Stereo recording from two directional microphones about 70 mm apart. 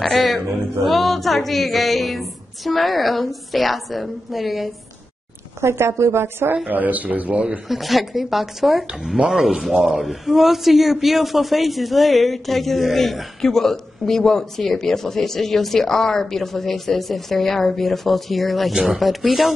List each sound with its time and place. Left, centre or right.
0.0 s speech: centre
5.6 s a woman's voice: right
6.7 s speech: right
7.6 s speech: centre